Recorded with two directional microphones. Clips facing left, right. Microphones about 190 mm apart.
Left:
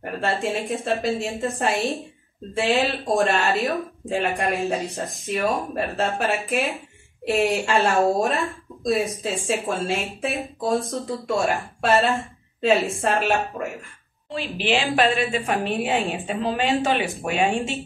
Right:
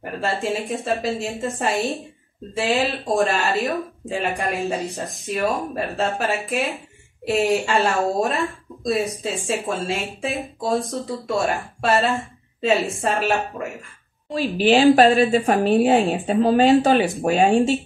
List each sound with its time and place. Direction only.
0.0 s speech: centre (ahead or behind)
14.3 s a woman's voice: 40° right (ahead or behind)